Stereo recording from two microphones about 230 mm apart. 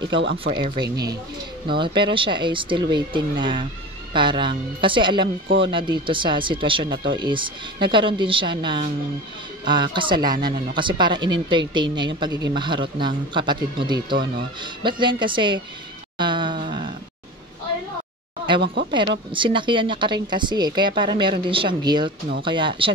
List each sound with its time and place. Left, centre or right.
0.0 s speech: right
0.3 s a woman's voice: right
16.2 s wail: centre
18.9 s a woman's voice: right